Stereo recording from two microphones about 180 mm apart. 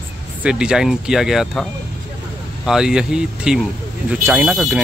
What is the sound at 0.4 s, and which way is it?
Speech, 5° right (ahead or behind).